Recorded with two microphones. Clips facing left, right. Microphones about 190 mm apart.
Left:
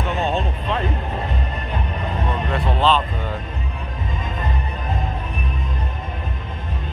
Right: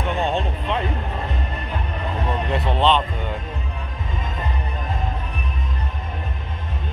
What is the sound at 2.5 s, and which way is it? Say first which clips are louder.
Music: even; 25° right (ahead or behind).